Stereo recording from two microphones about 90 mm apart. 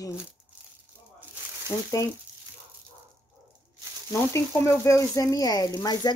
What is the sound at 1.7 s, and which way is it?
Speech, 40° left (ahead or behind).